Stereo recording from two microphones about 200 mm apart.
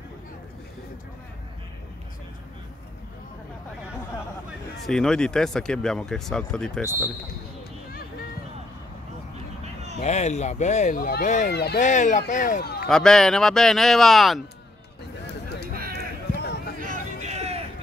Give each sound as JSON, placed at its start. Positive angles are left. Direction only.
{"t": 4.8, "sound": "speech", "side_deg": 5}
{"t": 7.9, "sound": "a sound", "side_deg": 50}
{"t": 10.0, "sound": "speech", "side_deg": 35}
{"t": 11.5, "sound": "speech", "side_deg": 55}
{"t": 11.8, "sound": "speech", "side_deg": 40}
{"t": 12.8, "sound": "speech", "side_deg": 5}
{"t": 15.9, "sound": "run", "side_deg": 50}
{"t": 16.8, "sound": "a sound", "side_deg": -40}